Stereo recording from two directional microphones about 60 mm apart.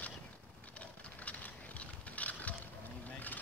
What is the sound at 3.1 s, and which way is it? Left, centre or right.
Boat, left.